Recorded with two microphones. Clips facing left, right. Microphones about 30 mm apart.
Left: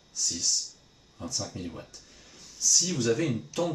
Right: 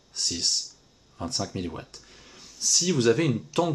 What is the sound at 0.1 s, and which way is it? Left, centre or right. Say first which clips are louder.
Speech: right 2 dB; right.